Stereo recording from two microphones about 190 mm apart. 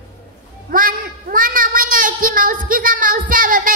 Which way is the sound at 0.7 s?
45° right (ahead or behind).